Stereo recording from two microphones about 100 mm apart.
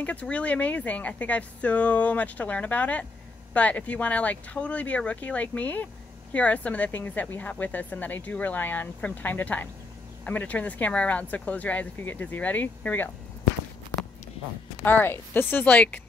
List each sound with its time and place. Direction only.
0.0 s speech: 15° left (ahead or behind)
14.8 s speech: 20° left (ahead or behind)